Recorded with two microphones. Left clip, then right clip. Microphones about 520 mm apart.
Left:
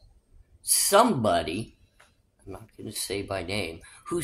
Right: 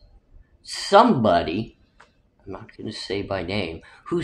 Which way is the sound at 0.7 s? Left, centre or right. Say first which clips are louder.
Right 5 dB; left.